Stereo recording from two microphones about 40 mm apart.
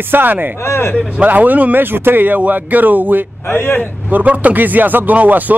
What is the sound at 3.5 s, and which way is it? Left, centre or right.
Speech, left.